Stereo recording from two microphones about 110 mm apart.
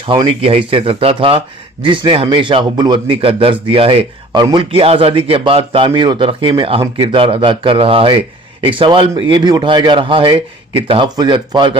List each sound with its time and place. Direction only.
0.3 s a man's voice: 55° right (ahead or behind)
4.4 s a man's voice: 45° right (ahead or behind)
11.1 s a man's voice: 45° right (ahead or behind)